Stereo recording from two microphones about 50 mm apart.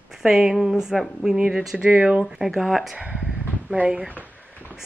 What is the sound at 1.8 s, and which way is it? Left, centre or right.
Speech, right.